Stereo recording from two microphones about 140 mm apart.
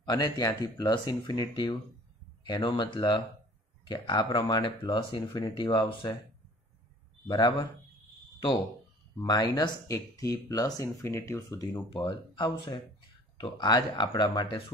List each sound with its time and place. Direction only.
0.0 s speech: 30° left (ahead or behind)
7.2 s speech: 35° left (ahead or behind)
9.2 s speech: 30° left (ahead or behind)
11.7 s speech: 35° left (ahead or behind)